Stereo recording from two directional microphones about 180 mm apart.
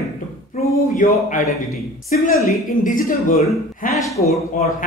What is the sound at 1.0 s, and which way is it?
Speech, 45° left (ahead or behind).